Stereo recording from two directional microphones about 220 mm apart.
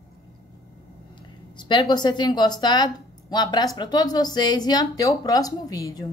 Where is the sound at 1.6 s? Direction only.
20° left (ahead or behind).